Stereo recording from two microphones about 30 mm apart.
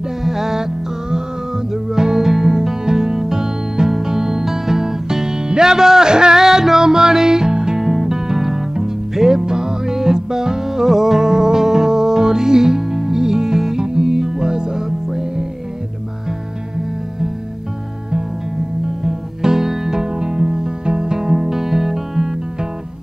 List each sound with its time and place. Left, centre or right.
0.2 s music: centre
6.4 s music: centre
9.5 s music: right
14.9 s music: centre
19.4 s music: centre
21.3 s music: centre